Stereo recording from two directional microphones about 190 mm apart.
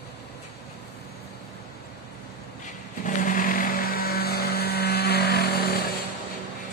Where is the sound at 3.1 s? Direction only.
45° left (ahead or behind).